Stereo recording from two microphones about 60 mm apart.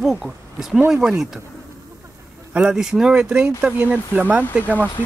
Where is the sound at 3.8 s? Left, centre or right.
Right.